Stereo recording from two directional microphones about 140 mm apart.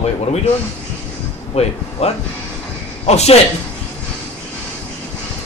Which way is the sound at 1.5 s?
50° left (ahead or behind).